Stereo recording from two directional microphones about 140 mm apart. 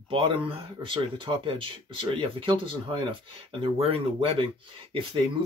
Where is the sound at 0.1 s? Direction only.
40° right (ahead or behind).